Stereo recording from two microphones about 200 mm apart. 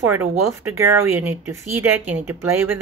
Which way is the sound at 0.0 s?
10° right (ahead or behind).